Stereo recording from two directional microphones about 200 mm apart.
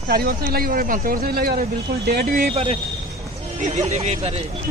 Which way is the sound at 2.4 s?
30° right (ahead or behind).